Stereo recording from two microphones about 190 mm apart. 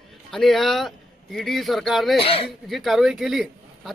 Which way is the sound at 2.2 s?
30° left (ahead or behind).